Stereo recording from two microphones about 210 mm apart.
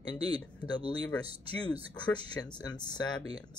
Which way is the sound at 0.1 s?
20° left (ahead or behind).